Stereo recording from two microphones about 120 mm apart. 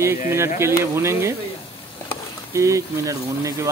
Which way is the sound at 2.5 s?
25° right (ahead or behind).